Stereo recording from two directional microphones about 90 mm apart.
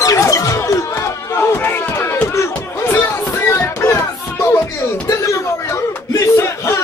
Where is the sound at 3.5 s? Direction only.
30° left (ahead or behind).